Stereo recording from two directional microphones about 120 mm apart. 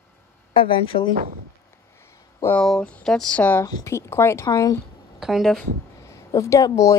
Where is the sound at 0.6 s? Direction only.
45° left (ahead or behind).